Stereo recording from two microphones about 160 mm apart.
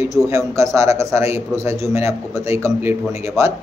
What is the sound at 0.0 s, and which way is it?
A man's voice, 20° right (ahead or behind).